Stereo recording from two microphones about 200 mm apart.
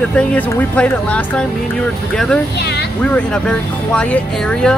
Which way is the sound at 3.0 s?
5° left (ahead or behind).